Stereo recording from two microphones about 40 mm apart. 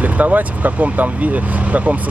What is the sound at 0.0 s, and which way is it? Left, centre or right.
Speech, right.